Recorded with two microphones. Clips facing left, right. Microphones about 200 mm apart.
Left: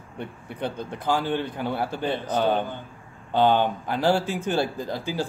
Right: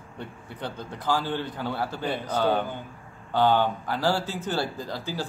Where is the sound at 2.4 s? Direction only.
15° left (ahead or behind).